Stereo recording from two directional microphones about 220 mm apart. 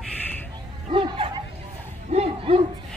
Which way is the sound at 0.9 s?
20° right (ahead or behind).